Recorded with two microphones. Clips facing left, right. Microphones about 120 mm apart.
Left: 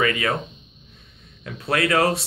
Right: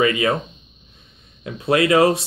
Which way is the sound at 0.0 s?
20° right (ahead or behind).